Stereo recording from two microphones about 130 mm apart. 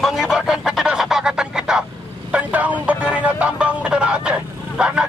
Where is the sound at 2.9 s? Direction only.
10° right (ahead or behind).